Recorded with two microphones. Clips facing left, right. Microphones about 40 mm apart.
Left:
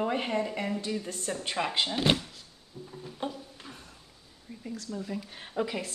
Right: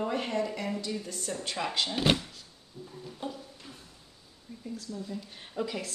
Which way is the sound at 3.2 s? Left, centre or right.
Left.